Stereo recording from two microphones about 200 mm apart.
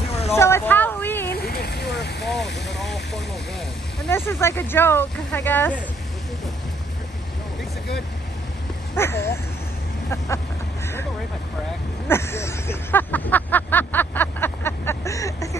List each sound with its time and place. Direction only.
0.4 s vehicle: 10° left (ahead or behind)
1.3 s vehicle: 50° left (ahead or behind)
2.7 s vehicle: centre (ahead or behind)
4.1 s speech: 10° left (ahead or behind)
8.9 s speech: 10° left (ahead or behind)
12.1 s a sound: 10° left (ahead or behind)